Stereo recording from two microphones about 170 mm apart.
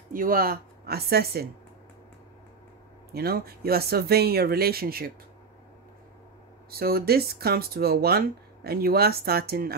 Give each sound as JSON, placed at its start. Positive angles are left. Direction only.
{"t": 0.1, "sound": "speech", "side_deg": -55}
{"t": 3.1, "sound": "speech", "side_deg": -65}
{"t": 6.7, "sound": "speech", "side_deg": -65}